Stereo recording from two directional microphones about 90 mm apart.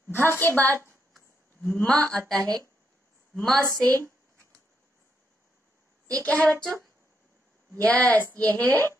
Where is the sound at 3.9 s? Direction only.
20° left (ahead or behind).